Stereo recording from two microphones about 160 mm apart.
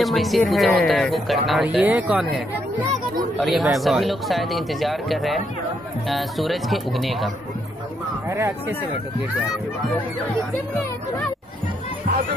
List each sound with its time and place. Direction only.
0.0 s speech: centre (ahead or behind)
8.3 s speech: 15° right (ahead or behind)